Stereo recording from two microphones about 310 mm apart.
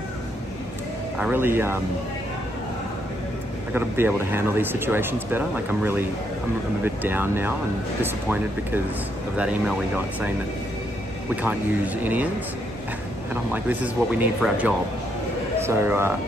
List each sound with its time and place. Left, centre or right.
1.1 s speech: centre
3.7 s speech: centre
11.4 s speech: centre
13.3 s speech: centre